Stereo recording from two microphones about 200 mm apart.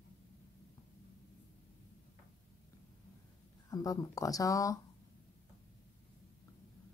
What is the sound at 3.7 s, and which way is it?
Speech, 20° left (ahead or behind).